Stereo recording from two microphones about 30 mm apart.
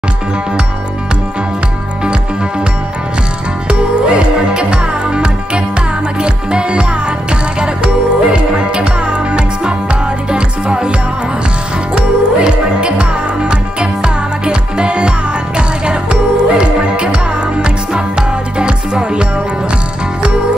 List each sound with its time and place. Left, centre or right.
3.6 s music: right
11.9 s music: right